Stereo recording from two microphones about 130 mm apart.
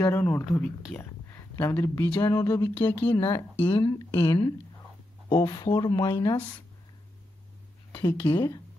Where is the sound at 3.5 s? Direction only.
45° left (ahead or behind).